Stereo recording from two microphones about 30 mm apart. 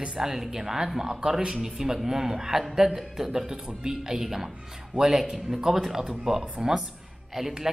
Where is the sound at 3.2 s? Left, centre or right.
Centre.